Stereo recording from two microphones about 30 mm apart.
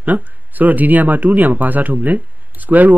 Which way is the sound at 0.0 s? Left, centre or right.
Right.